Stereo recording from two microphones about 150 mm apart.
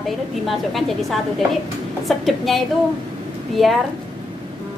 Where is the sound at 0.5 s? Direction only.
Centre (ahead or behind).